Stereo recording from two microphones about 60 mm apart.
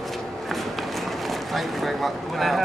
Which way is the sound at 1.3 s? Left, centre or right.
Centre.